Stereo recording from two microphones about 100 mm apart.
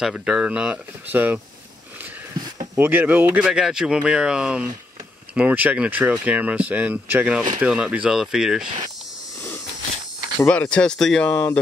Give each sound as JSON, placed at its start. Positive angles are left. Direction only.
{"t": 0.0, "sound": "speech", "side_deg": -5}
{"t": 2.3, "sound": "a sound", "side_deg": -40}
{"t": 2.8, "sound": "speech", "side_deg": -20}
{"t": 8.6, "sound": "cricket", "side_deg": -50}
{"t": 10.5, "sound": "speech", "side_deg": 10}